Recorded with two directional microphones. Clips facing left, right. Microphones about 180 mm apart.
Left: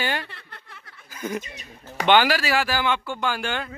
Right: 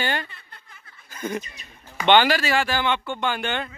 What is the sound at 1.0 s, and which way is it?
Chuckle, 5° left (ahead or behind).